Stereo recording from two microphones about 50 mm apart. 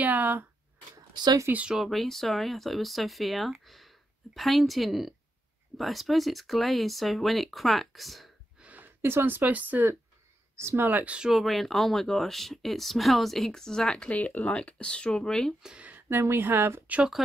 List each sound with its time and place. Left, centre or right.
0.0 s speech: right
1.5 s speech: right
1.9 s speech: centre
8.5 s a sound: right
8.8 s speech: right
9.5 s speech: right
11.2 s speech: centre
13.5 s speech: centre
14.0 s speech: left; by 15.5 s centre
16.1 s speech: right